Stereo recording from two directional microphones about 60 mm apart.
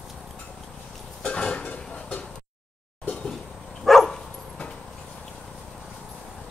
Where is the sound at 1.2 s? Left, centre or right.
Centre.